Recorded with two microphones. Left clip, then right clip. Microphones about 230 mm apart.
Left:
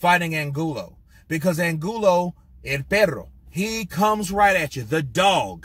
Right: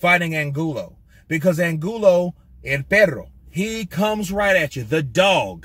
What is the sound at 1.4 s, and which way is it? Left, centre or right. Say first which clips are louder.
Speech: right 3 dB; centre.